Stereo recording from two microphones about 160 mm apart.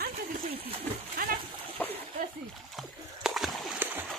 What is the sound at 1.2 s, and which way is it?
Splash, 65° right (ahead or behind).